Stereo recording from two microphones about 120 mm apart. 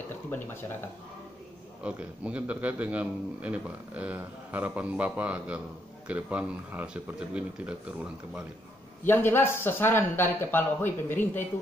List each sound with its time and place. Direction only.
0.3 s speech: 20° left (ahead or behind)
1.8 s a man's voice: 10° right (ahead or behind)
9.0 s speech: 15° left (ahead or behind)